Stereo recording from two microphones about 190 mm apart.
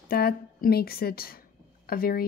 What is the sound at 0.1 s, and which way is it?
Speech, 55° left (ahead or behind).